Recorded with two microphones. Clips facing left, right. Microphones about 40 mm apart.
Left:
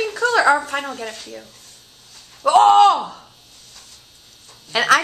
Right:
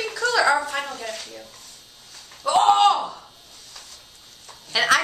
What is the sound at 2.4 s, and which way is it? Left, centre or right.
Speech, left.